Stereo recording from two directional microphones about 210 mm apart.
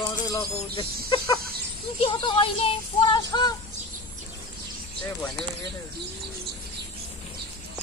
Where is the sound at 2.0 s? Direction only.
25° left (ahead or behind).